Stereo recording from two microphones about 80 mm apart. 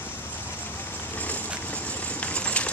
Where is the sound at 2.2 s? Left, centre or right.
Centre.